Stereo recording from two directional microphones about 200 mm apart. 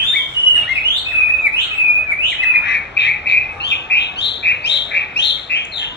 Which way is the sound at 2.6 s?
60° left (ahead or behind).